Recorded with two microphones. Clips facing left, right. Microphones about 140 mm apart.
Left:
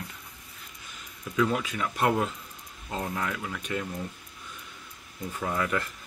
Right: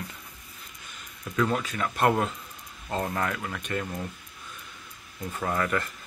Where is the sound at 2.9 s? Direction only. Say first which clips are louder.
Right 3 dB; 60° right (ahead or behind).